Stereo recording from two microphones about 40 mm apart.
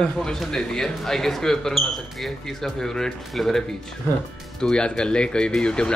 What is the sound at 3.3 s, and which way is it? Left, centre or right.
Speech, centre.